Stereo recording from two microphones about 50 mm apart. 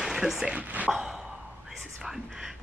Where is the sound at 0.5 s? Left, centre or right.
Right.